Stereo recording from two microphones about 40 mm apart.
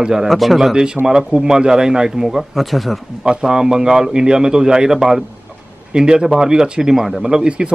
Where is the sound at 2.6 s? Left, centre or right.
Centre.